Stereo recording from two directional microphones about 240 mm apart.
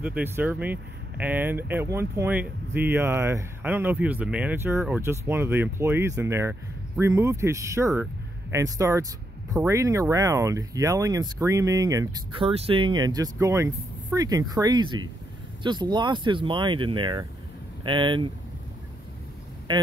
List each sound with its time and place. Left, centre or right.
0.0 s speech: centre
19.7 s speech: centre